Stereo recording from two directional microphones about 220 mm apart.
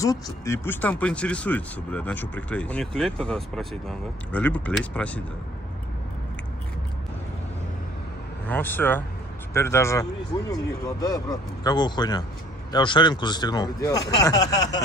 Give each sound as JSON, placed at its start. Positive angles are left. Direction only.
{"t": 0.0, "sound": "speech", "side_deg": 15}
{"t": 8.5, "sound": "speech", "side_deg": 10}